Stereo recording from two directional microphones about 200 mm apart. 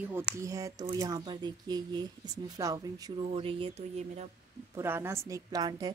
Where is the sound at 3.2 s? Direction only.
30° right (ahead or behind).